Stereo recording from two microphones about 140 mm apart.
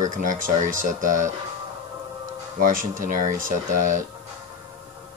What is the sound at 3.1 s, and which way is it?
Speech, 70° right (ahead or behind).